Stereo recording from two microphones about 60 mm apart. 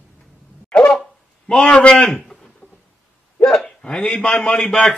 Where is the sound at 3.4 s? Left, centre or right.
Centre.